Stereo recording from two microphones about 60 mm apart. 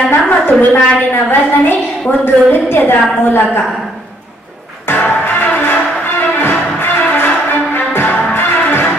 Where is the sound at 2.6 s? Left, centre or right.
Left.